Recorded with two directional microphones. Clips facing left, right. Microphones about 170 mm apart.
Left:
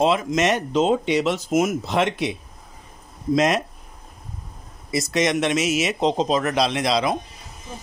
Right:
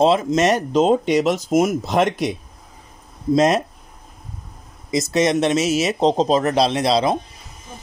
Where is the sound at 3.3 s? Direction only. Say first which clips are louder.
Right 4 dB; 35° right (ahead or behind).